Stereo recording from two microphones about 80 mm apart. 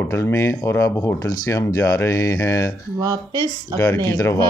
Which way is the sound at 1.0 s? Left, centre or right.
Left.